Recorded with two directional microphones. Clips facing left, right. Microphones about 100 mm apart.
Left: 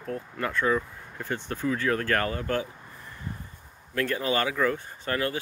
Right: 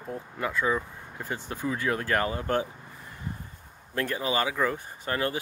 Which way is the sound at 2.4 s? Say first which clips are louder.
Right 1 dB; 25° right (ahead or behind).